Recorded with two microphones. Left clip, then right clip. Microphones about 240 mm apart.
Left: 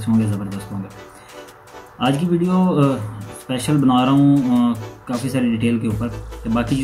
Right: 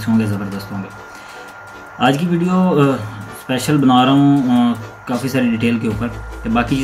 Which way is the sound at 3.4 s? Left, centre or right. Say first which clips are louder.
Right 3 dB; centre.